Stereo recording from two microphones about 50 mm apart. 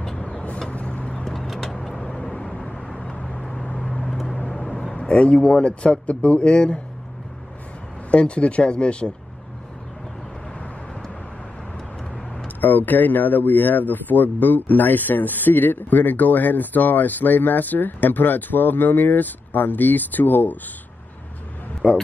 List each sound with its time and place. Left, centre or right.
0.1 s vehicle: left
1.2 s vehicle: centre
1.8 s vehicle: centre
4.0 s vehicle: centre
4.4 s speech: centre
8.1 s speech: left
12.5 s speech: left
21.8 s speech: centre